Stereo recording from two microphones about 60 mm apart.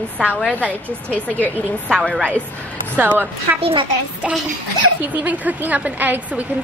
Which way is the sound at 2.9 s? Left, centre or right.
Right.